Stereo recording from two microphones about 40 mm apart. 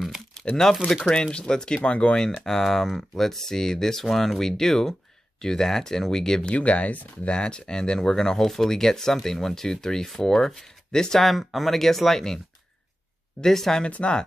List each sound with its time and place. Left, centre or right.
0.8 s speech: centre
1.1 s speech: left
2.4 s speech: centre
6.5 s speech: left; by 11.1 s centre
11.1 s speech: centre
13.4 s speech: centre
13.8 s speech: left